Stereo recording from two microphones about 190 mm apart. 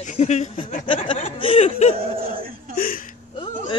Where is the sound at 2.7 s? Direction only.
50° left (ahead or behind).